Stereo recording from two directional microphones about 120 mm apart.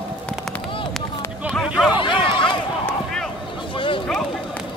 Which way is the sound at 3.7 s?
45° left (ahead or behind).